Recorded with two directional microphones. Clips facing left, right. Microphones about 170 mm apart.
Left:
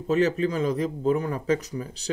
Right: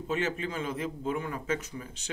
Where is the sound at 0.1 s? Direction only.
40° left (ahead or behind).